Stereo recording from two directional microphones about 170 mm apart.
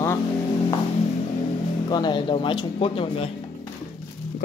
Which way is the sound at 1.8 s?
25° left (ahead or behind).